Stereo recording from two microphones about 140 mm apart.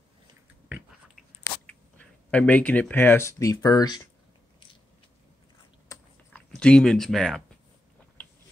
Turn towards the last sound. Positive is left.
turn(degrees=0)  # may be behind; listen again after turning